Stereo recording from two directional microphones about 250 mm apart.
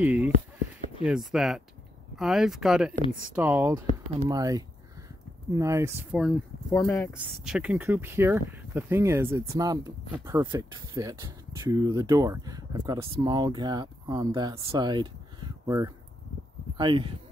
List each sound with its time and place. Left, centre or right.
0.0 s a sound: centre
1.0 s speech: centre
6.7 s speech: centre
7.4 s speech: centre